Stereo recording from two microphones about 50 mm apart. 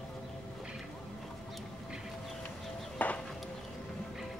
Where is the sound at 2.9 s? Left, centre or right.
Left.